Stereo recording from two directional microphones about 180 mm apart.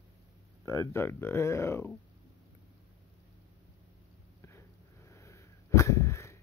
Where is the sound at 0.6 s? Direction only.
15° left (ahead or behind).